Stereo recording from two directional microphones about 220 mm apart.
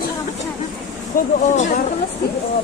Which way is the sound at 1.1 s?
35° left (ahead or behind).